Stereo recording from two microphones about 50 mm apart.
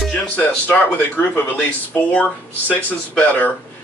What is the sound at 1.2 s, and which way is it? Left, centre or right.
Speech, left.